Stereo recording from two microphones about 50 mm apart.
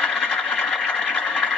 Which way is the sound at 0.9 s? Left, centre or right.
Left.